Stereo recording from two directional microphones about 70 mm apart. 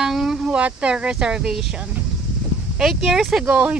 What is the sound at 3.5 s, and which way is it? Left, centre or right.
Speech, centre.